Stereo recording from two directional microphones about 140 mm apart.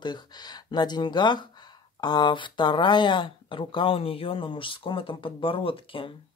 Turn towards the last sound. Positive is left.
turn(degrees=40)  # may be behind; listen again after turning